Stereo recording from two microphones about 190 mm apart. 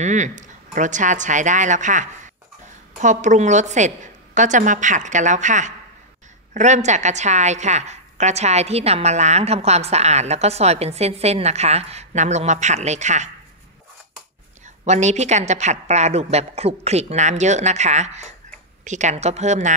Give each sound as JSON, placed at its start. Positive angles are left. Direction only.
{"t": 0.0, "sound": "a woman's voice", "side_deg": -40}
{"t": 14.9, "sound": "a woman's voice", "side_deg": -35}